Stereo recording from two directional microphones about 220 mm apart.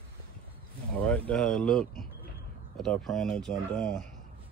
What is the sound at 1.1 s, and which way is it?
Speech, 5° left (ahead or behind).